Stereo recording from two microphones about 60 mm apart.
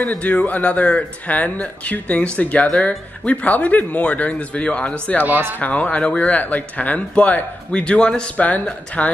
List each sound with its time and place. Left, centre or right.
0.0 s speech: left